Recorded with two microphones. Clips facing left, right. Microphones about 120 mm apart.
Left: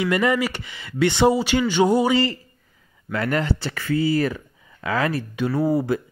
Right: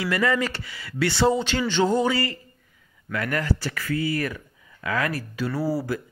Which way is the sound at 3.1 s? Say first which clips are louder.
Left 3 dB; 25° left (ahead or behind).